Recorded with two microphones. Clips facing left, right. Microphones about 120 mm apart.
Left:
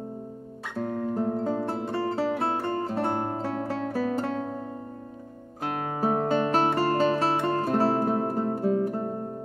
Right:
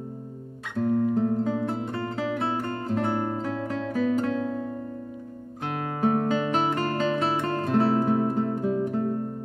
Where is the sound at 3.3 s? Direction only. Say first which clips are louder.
Even; 35° left (ahead or behind).